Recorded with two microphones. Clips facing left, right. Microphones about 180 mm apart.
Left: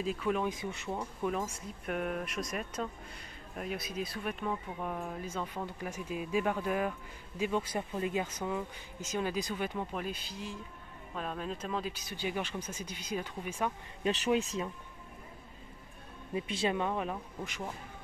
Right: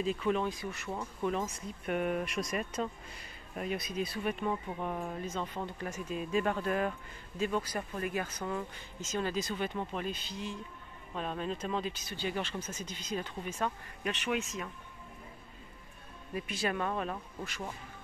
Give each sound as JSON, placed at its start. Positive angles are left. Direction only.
{"t": 0.0, "sound": "speech", "side_deg": 5}
{"t": 0.5, "sound": "speech", "side_deg": 20}
{"t": 1.2, "sound": "speech", "side_deg": 5}
{"t": 7.5, "sound": "speech", "side_deg": 20}
{"t": 14.0, "sound": "speech", "side_deg": 35}
{"t": 16.3, "sound": "speech", "side_deg": 25}